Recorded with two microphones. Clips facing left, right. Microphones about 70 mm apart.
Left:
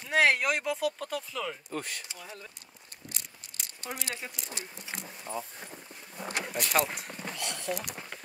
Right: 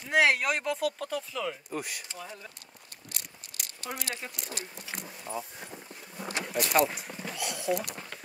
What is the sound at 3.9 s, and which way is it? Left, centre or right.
Speech, centre.